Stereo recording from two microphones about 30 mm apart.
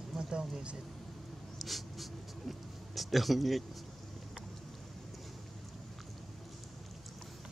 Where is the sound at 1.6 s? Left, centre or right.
Centre.